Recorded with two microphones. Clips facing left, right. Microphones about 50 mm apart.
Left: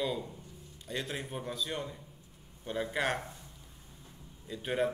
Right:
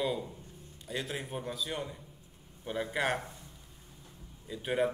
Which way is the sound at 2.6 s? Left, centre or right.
Centre.